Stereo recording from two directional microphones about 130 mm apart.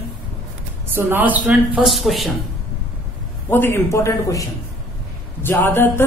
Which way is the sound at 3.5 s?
20° left (ahead or behind).